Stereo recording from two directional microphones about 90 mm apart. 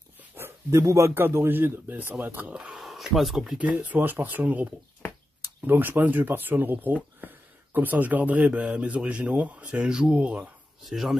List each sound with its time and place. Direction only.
0.4 s a man's voice: 35° right (ahead or behind); by 2.8 s 10° right (ahead or behind)
2.8 s speech: centre (ahead or behind)
3.5 s a man's voice: 15° right (ahead or behind)
10.8 s speech: centre (ahead or behind)